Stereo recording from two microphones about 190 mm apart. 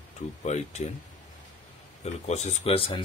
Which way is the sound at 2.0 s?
35° left (ahead or behind).